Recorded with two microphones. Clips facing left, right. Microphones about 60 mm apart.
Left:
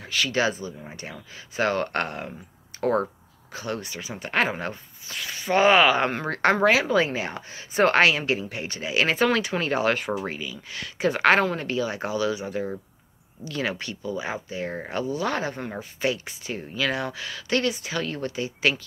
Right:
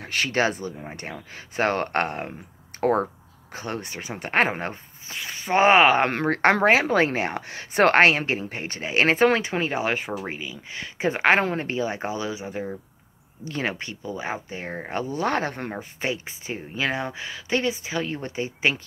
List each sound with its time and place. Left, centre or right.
0.0 s speech: right
9.6 s speech: centre
13.4 s speech: right
15.7 s speech: right